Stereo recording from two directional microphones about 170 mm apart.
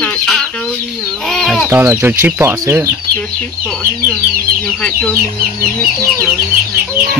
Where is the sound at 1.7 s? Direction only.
15° right (ahead or behind).